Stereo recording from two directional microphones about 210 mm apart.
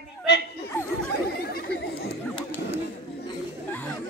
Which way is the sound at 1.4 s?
45° left (ahead or behind).